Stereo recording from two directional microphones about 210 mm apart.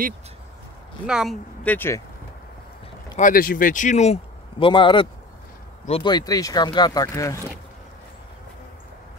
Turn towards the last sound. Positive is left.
turn(degrees=15)  # may be behind; listen again after turning